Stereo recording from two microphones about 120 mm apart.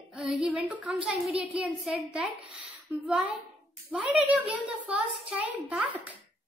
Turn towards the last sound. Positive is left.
turn(degrees=-10)  # may be behind; listen again after turning